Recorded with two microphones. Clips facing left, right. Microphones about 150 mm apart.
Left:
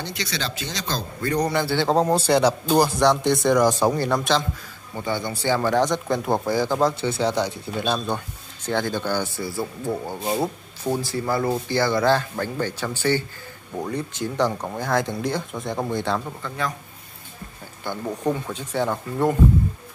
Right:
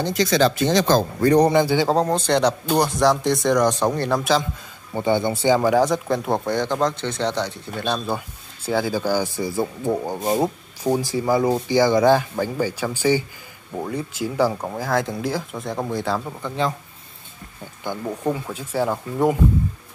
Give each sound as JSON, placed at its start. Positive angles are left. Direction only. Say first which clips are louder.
{"t": 0.0, "sound": "speech", "louder": "right 11 dB", "side_deg": -45}
{"t": 1.5, "sound": "speech", "louder": "right 5 dB", "side_deg": -15}
{"t": 1.9, "sound": "speech", "louder": "even", "side_deg": 5}
{"t": 4.9, "sound": "speech", "louder": "right 7 dB", "side_deg": -20}
{"t": 8.6, "sound": "speech", "louder": "right 3 dB", "side_deg": -5}
{"t": 16.4, "sound": "speech", "louder": "right 7 dB", "side_deg": -25}
{"t": 18.0, "sound": "speech", "louder": "even", "side_deg": -5}